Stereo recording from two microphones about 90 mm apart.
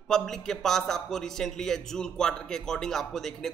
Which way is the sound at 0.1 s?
5° left (ahead or behind).